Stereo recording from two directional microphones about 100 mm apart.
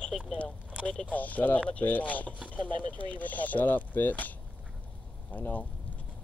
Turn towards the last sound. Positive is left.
turn(degrees=15)  # may be behind; listen again after turning